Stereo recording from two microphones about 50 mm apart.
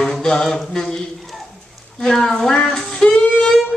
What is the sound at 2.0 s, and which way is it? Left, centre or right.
Speech, centre.